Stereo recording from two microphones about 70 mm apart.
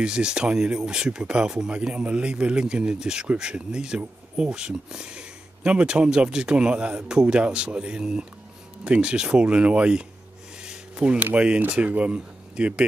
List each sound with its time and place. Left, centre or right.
0.0 s speech: centre
10.6 s a sound: centre
11.3 s speech: centre